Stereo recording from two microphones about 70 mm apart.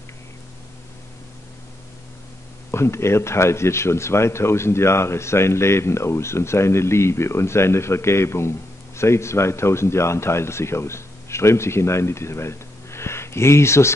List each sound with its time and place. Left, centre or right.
2.7 s speech: left